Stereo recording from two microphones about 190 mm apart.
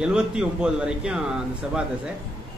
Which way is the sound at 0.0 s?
5° right (ahead or behind).